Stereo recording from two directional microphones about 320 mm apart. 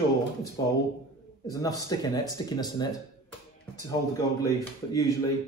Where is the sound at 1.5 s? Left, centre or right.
Centre.